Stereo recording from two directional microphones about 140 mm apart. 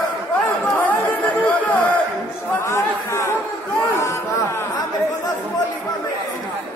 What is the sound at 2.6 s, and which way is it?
Chatter, 20° left (ahead or behind).